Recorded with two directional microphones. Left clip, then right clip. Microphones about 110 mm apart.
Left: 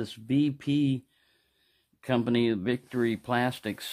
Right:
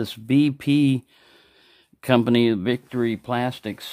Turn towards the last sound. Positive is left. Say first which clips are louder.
# right 3 dB
turn(degrees=-5)  # may be behind; listen again after turning